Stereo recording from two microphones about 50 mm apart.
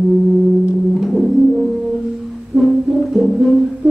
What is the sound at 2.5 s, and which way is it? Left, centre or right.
Music, centre.